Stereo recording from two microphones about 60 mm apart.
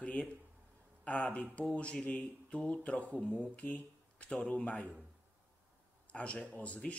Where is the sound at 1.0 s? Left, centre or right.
Left.